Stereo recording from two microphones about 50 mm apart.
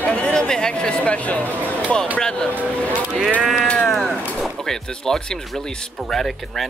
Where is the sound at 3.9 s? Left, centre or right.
Centre.